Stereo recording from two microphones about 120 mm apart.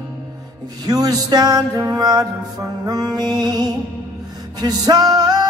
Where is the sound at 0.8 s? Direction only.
35° right (ahead or behind).